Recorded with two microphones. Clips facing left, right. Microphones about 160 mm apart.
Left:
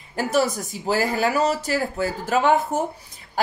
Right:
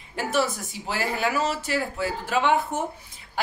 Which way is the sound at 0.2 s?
40° left (ahead or behind).